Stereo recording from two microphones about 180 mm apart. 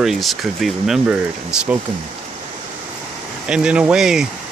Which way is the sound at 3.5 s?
5° right (ahead or behind).